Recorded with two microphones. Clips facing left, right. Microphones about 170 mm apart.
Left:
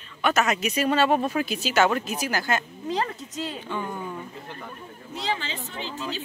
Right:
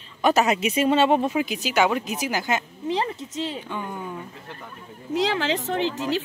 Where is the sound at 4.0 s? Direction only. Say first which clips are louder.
Even; 5° right (ahead or behind).